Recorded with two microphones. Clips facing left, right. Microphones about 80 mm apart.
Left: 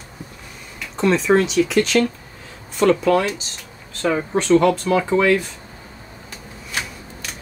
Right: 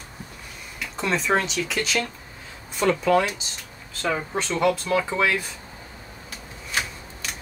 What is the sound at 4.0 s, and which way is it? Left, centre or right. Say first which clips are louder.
Speech: left 6 dB; centre.